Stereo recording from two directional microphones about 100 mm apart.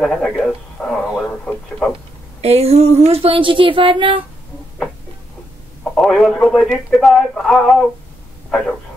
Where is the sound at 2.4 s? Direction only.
90° right; by 4.2 s 60° right (ahead or behind).